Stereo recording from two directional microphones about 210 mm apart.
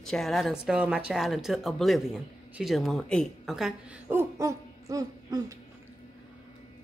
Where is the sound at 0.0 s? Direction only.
Centre (ahead or behind); by 5.6 s 15° right (ahead or behind).